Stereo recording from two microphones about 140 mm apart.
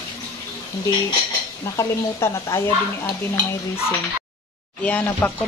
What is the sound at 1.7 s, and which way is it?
Speech, 20° left (ahead or behind).